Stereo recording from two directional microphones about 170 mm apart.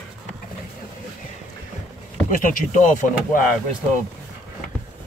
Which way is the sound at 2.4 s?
50° left (ahead or behind).